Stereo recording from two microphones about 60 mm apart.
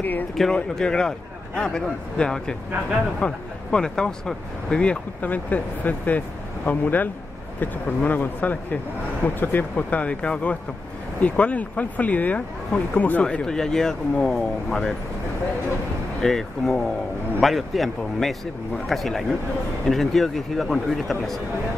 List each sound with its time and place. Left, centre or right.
0.4 s speech: centre
5.2 s speech: left; by 15.0 s centre
16.2 s speech: centre